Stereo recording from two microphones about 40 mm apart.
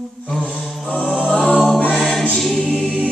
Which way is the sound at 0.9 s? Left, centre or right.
Centre.